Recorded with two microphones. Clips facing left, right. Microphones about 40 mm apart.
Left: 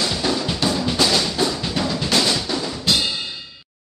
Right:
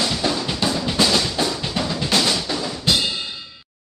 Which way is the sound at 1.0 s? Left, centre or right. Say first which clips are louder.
Even; centre.